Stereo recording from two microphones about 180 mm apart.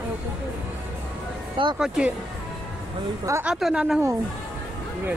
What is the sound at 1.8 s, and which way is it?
Speech, 5° right (ahead or behind).